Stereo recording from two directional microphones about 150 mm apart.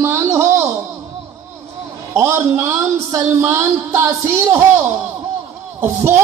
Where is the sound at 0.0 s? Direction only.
15° right (ahead or behind).